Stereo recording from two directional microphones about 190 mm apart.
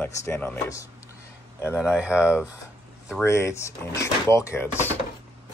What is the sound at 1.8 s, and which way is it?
Speech, 5° right (ahead or behind).